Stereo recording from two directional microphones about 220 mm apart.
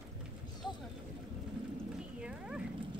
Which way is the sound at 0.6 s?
20° left (ahead or behind).